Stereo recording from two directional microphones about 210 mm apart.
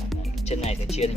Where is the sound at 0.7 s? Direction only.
30° left (ahead or behind).